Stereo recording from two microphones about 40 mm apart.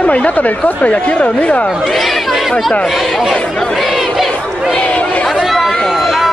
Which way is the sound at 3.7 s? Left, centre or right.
Centre.